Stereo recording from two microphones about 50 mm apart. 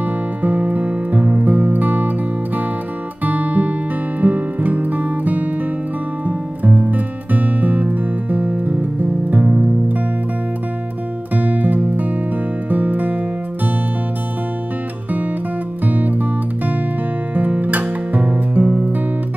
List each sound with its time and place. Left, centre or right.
0.0 s music: right
11.3 s music: right
15.8 s music: right